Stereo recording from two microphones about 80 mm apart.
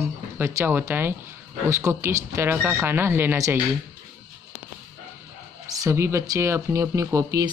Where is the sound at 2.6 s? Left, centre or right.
Right.